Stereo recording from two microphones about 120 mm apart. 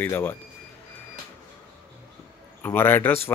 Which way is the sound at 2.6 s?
15° left (ahead or behind).